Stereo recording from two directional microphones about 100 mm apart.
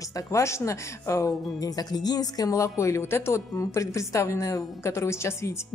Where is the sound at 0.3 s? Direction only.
30° left (ahead or behind).